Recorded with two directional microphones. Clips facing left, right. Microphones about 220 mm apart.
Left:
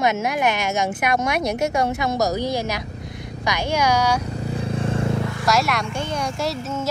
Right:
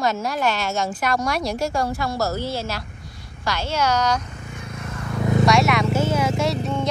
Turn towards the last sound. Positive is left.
turn(degrees=0)  # may be behind; listen again after turning